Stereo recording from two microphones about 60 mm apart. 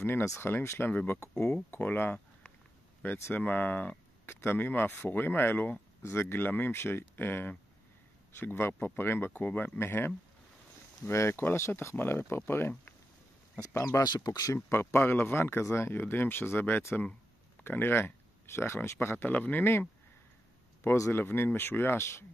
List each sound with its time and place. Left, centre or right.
0.4 s speech: left
1.3 s speech: centre
1.7 s speech: left
4.3 s speech: left
9.8 s speech: left
13.6 s speech: left
14.7 s speech: left
19.2 s speech: left
19.6 s speech: left
20.8 s speech: left
21.1 s speech: left